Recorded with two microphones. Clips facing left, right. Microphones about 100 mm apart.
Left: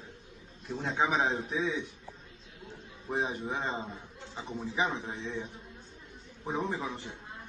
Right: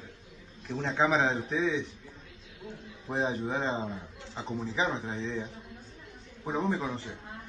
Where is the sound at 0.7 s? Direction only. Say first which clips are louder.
Right 3 dB; 5° left (ahead or behind).